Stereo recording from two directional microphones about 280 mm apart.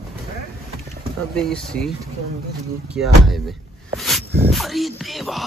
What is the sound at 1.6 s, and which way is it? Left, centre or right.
Speech, centre.